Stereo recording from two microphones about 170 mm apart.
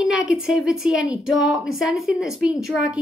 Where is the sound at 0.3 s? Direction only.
5° right (ahead or behind).